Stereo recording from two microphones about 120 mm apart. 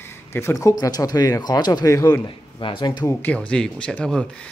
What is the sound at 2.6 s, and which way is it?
Speech, 40° left (ahead or behind).